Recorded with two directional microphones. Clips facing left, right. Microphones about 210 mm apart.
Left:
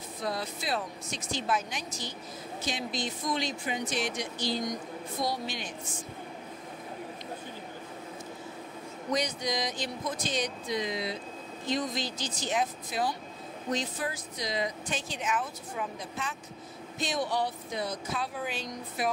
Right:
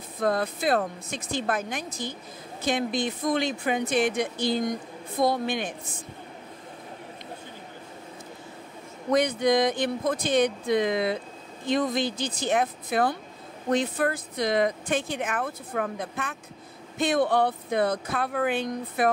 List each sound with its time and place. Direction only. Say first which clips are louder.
0.2 s speech: right 9 dB; 55° right (ahead or behind)
9.1 s speech: right 9 dB; 55° right (ahead or behind)